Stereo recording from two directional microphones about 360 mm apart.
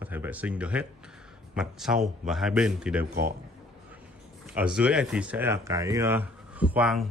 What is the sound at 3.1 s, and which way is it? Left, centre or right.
Speech, right.